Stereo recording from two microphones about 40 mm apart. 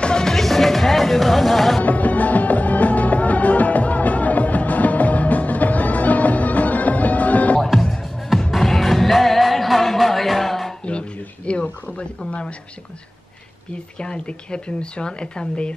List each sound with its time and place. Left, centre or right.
0.0 s music: centre
0.3 s music: centre
1.8 s music: left
7.6 s music: centre
10.9 s a sound: left
13.9 s speech: left